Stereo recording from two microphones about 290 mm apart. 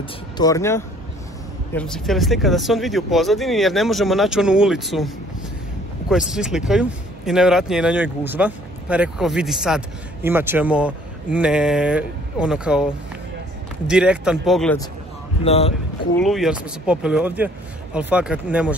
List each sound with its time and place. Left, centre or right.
0.4 s speech: centre
15.4 s speech: left
16.2 s speech: centre